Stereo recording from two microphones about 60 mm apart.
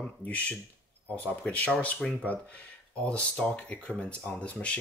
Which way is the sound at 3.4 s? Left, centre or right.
Left.